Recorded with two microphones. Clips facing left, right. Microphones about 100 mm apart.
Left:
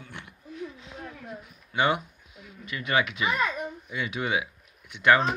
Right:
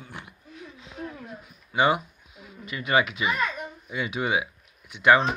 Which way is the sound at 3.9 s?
20° right (ahead or behind).